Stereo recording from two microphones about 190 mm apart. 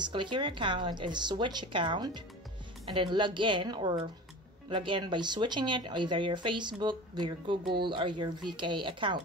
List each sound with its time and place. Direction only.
0.0 s speech: 25° right (ahead or behind)